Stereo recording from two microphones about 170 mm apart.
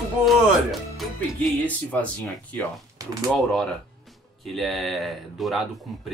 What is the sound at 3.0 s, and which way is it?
Speech, 20° right (ahead or behind).